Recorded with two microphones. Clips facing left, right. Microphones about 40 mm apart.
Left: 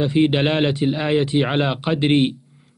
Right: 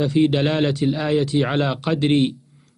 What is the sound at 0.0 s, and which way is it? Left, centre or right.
Speech, left.